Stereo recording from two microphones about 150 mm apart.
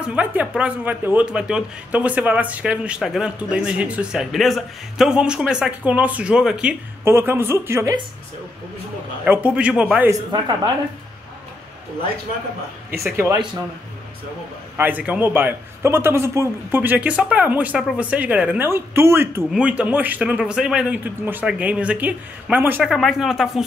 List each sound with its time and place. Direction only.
0.0 s speech: 10° right (ahead or behind)
7.1 s speech: 15° right (ahead or behind)
9.2 s speech: 10° right (ahead or behind)
10.3 s a woman's voice: 30° right (ahead or behind)
13.1 s speech: 15° right (ahead or behind)
14.8 s speech: 10° right (ahead or behind)
22.8 s speech: centre (ahead or behind)